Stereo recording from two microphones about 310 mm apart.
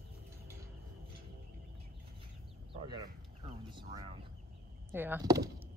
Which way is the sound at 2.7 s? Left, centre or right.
Centre.